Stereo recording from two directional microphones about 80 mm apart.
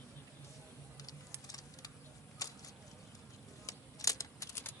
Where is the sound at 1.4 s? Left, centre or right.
Left.